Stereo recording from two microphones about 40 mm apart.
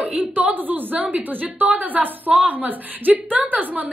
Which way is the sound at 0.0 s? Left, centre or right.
Right.